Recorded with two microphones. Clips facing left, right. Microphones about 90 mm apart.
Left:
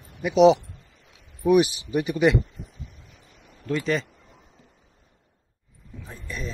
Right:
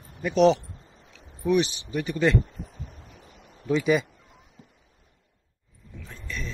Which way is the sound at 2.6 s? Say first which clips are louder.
Right 2 dB; 40° right (ahead or behind).